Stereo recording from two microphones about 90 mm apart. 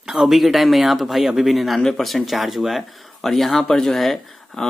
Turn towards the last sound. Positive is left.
turn(degrees=5)  # may be behind; listen again after turning